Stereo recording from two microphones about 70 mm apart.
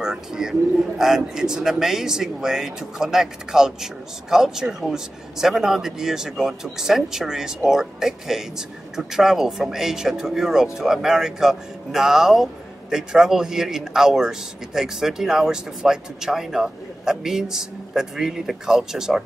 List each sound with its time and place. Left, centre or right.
0.0 s speech: centre